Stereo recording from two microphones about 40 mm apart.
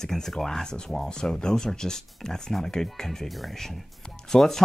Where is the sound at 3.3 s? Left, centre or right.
Centre.